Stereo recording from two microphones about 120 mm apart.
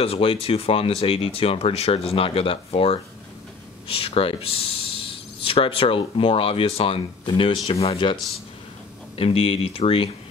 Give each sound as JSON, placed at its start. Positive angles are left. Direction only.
{"t": 0.0, "sound": "speech", "side_deg": 50}